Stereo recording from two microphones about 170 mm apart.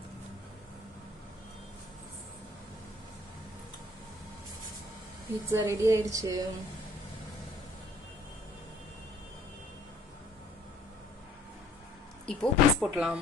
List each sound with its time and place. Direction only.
5.5 s a woman's voice: 15° right (ahead or behind)
12.3 s speech: centre (ahead or behind)